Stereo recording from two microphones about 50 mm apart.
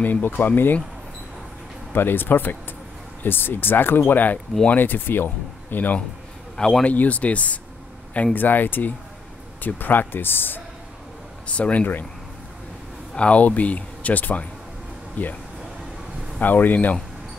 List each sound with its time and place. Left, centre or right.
0.0 s speech: left
1.9 s speech: left
6.5 s speech: centre
6.8 s speech: left
8.4 s speech: left
11.4 s speech: left
13.1 s speech: left
16.3 s speech: left